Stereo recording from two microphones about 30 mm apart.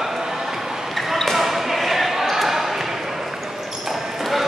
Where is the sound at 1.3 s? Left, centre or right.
Centre.